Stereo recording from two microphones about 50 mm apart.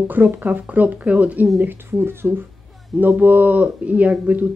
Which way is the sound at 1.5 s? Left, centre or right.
Right.